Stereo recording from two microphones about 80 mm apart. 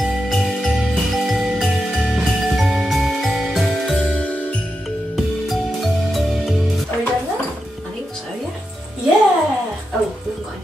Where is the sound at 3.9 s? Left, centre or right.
Centre.